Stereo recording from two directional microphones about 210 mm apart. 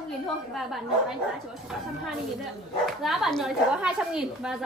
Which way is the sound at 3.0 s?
Centre (ahead or behind).